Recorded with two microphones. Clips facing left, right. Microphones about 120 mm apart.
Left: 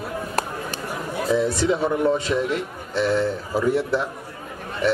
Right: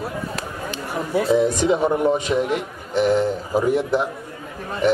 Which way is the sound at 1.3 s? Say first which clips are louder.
Right 2 dB; 20° right (ahead or behind).